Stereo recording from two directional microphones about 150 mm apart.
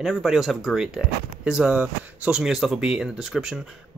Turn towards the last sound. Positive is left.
turn(degrees=-5)  # may be behind; listen again after turning